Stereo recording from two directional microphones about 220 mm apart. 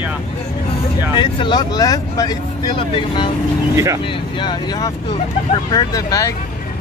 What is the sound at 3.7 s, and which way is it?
Speech, 15° right (ahead or behind).